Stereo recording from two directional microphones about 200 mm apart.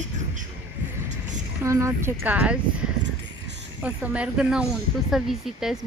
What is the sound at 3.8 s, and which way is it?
Speech, 5° right (ahead or behind).